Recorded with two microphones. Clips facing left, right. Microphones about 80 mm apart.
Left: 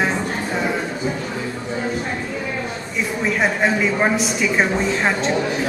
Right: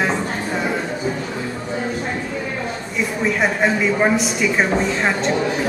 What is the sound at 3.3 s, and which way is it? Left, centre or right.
Speech, centre.